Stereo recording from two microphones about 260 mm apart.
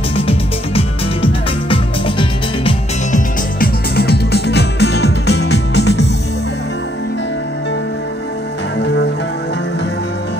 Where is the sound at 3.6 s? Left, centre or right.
Left.